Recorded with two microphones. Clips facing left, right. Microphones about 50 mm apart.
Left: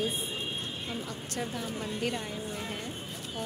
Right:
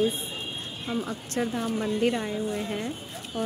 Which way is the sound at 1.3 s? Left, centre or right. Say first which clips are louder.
Right 8 dB; right.